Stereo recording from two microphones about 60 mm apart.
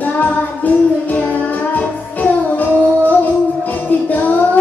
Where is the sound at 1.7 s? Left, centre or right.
Left.